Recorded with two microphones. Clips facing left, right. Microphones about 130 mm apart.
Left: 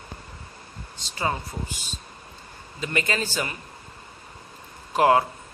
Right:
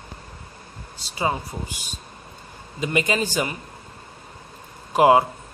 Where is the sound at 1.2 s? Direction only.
15° right (ahead or behind).